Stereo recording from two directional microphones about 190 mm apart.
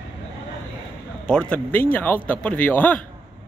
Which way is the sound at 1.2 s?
5° left (ahead or behind).